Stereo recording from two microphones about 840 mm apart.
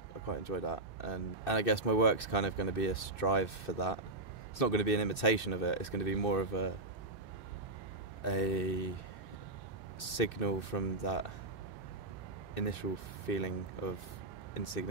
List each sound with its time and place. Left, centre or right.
0.3 s speech: left
8.2 s speech: left
9.9 s speech: left
12.5 s speech: left